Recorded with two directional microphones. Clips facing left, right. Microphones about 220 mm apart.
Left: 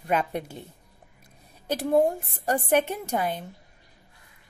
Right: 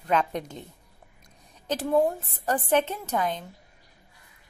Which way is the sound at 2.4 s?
15° left (ahead or behind).